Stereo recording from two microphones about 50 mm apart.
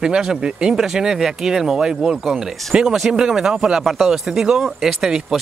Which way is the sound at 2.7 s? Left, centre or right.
Centre.